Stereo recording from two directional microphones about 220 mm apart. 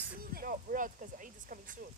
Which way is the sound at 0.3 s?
40° right (ahead or behind).